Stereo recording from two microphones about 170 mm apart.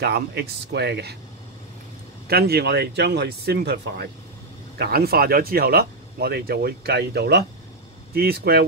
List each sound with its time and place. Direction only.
0.0 s speech: 70° right (ahead or behind)
2.2 s speech: 65° right (ahead or behind)
4.7 s speech: 70° right (ahead or behind)